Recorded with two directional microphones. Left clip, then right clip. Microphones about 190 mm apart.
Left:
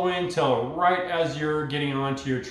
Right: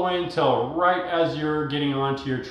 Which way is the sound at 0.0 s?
10° left (ahead or behind).